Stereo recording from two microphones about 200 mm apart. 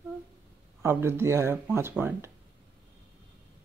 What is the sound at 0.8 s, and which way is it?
Speech, 10° right (ahead or behind).